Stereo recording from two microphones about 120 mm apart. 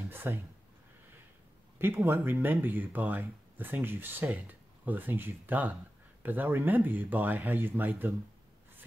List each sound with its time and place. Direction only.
0.1 s speech: 20° right (ahead or behind)
2.0 s speech: 20° right (ahead or behind)